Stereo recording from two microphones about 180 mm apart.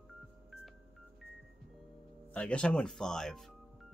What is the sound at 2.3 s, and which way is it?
Speech, 5° left (ahead or behind).